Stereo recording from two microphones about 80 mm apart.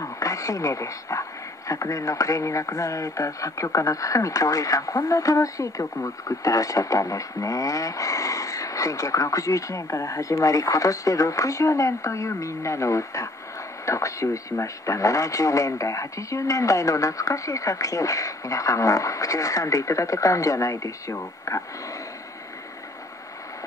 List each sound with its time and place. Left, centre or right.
0.0 s a man's voice: left